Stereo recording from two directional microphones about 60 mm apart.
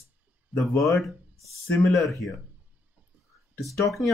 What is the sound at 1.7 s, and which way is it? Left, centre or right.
Speech, left.